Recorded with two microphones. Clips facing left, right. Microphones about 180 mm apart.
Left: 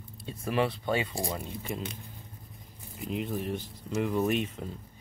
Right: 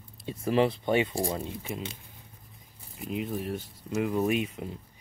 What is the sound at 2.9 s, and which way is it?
Speech, centre (ahead or behind).